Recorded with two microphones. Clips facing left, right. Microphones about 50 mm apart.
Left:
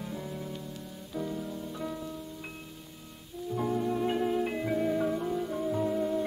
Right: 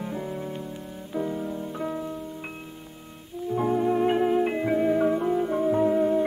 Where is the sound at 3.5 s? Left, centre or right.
Right.